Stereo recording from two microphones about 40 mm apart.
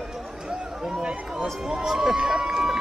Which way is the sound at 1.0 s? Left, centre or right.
Right.